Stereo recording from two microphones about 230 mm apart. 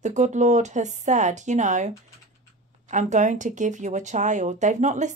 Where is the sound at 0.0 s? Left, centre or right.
Right.